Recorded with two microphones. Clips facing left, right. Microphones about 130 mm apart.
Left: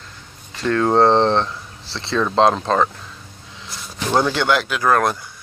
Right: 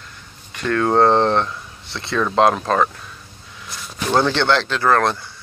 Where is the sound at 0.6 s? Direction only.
30° left (ahead or behind).